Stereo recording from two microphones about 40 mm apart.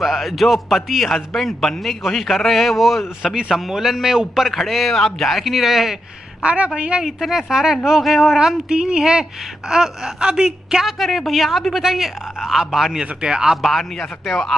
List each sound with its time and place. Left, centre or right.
0.0 s a man's voice: centre
6.4 s a woman's voice: right
7.0 s a woman's voice: centre
8.6 s a woman's voice: right
11.0 s a man's voice: centre
13.0 s a woman's voice: right
13.6 s a man's voice: centre